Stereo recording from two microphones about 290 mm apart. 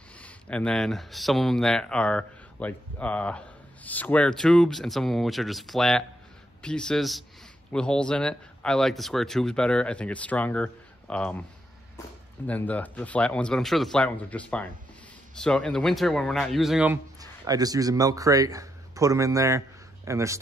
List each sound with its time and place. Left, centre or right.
0.2 s speech: centre
12.4 s speech: centre